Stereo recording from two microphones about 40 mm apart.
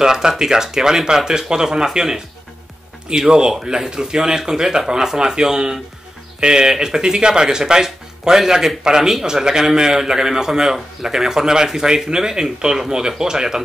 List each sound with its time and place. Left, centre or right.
0.0 s speech: centre
3.3 s speech: centre